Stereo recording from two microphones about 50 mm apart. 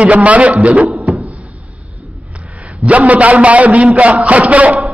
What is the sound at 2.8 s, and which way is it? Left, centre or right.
A man's voice, right.